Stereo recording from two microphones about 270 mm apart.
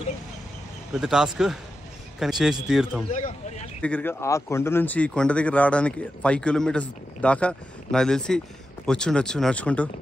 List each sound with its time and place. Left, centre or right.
0.9 s a man's voice: centre
3.1 s speech: left
3.8 s speech: centre